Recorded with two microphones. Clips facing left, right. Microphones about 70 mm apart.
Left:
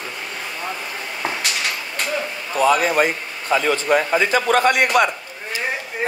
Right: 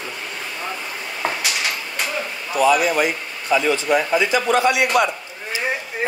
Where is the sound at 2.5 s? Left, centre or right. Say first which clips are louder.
Even; left.